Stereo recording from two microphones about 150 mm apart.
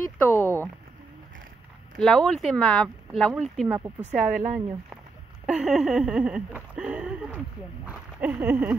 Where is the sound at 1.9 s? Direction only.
5° left (ahead or behind).